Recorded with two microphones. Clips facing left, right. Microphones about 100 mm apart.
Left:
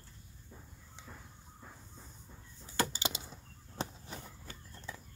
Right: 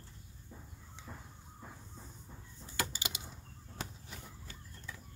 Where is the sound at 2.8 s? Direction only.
30° left (ahead or behind).